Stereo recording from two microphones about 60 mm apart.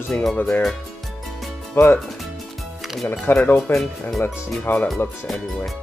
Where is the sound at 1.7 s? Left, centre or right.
Left.